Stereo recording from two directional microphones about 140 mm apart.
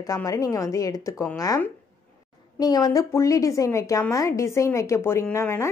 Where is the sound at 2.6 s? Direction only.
30° left (ahead or behind).